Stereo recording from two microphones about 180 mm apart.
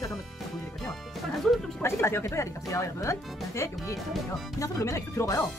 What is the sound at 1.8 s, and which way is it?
Speech, 15° left (ahead or behind).